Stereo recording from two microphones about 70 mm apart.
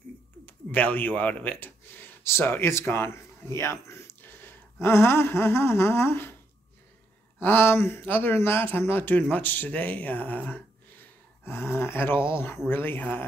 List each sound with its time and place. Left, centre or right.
0.5 s speech: left
4.2 s a sound: left
4.7 s speech: left
7.3 s speech: left